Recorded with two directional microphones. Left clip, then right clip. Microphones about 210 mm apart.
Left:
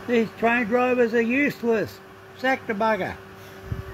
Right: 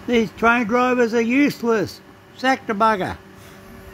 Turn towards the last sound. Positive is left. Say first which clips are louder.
# right 5 dB
turn(degrees=-30)  # may be behind; listen again after turning